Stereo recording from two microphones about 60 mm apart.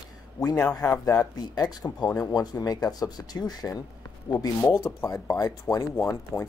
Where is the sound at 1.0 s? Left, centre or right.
Left.